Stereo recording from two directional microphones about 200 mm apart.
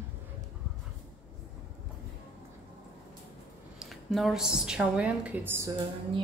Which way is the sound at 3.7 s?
Centre (ahead or behind).